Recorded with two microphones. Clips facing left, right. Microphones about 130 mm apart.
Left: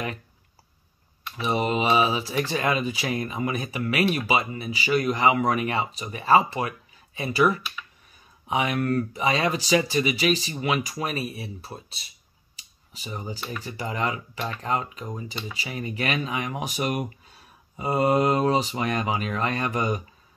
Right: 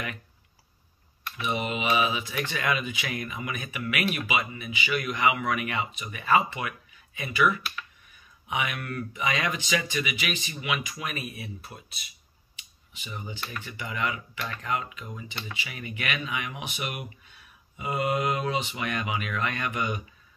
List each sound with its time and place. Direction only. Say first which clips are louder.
1.3 s speech: left 5 dB; 35° left (ahead or behind)
12.5 s a sound: left 1 dB; 35° left (ahead or behind)
13.6 s speech: left 3 dB; 35° left (ahead or behind)